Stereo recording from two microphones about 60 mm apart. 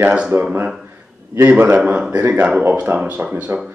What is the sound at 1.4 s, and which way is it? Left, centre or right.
Speech, right.